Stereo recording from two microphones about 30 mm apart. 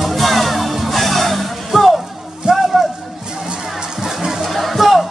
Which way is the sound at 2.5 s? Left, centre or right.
Right.